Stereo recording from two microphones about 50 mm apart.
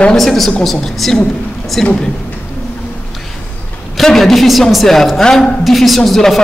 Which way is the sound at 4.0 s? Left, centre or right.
Centre.